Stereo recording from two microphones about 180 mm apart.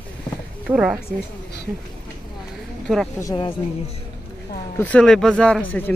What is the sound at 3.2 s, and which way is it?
Speech, 25° left (ahead or behind).